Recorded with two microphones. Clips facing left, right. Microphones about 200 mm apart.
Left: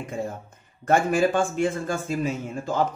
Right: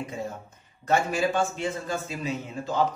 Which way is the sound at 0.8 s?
50° left (ahead or behind).